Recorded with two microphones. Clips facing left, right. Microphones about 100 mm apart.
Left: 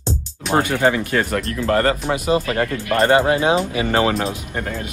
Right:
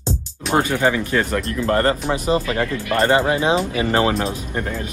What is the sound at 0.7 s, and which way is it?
Speech, 20° left (ahead or behind).